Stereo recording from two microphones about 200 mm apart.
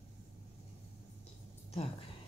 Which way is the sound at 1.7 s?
30° left (ahead or behind).